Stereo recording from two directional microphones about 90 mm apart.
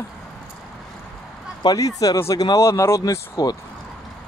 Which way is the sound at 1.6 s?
40° left (ahead or behind).